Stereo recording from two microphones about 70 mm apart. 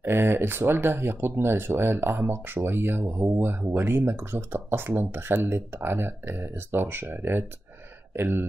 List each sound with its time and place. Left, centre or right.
0.0 s speech: right